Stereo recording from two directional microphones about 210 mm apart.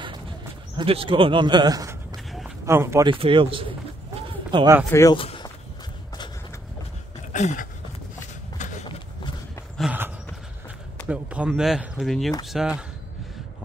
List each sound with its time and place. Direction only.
0.7 s speech: 25° right (ahead or behind)
3.1 s speech: 25° right (ahead or behind)
4.9 s speech: 15° left (ahead or behind)
5.2 s walk: 25° left (ahead or behind)
7.3 s dog: 35° left (ahead or behind)
8.6 s walk: 35° left (ahead or behind)
9.8 s horse: 5° right (ahead or behind)
11.1 s speech: 5° right (ahead or behind)